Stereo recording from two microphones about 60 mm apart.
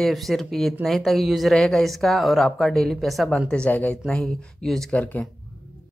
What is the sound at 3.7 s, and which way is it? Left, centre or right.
Speech, left.